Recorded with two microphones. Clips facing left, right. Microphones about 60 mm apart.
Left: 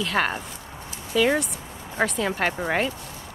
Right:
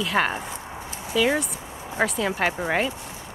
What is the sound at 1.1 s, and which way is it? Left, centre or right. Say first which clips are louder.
Speech: left 1 dB; centre.